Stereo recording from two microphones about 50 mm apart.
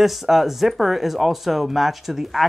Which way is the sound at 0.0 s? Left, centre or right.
Centre.